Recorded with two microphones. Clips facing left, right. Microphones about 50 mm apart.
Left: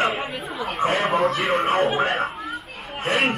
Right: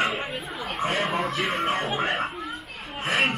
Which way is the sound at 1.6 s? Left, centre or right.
Centre.